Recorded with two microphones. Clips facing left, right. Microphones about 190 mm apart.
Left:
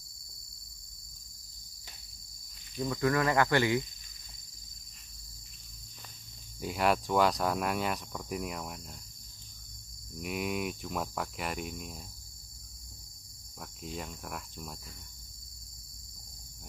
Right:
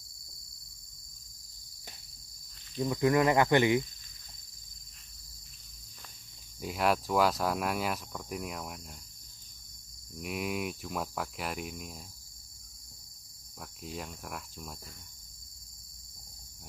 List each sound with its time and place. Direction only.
2.8 s speech: 20° right (ahead or behind)
6.6 s cricket: centre (ahead or behind)
10.1 s cricket: centre (ahead or behind)
13.6 s cricket: centre (ahead or behind)